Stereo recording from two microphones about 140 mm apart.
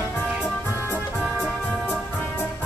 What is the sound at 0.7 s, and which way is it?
Music, 15° left (ahead or behind).